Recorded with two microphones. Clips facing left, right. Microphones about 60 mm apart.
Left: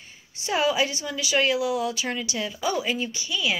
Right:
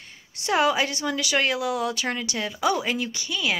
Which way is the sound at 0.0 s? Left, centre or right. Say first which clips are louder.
Right 3 dB; right.